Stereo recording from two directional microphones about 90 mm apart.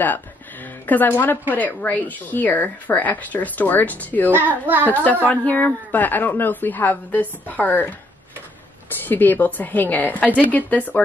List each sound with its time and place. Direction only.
0.8 s speech: 20° left (ahead or behind)
4.3 s a child's voice: 20° right (ahead or behind)
5.2 s speech: 15° left (ahead or behind)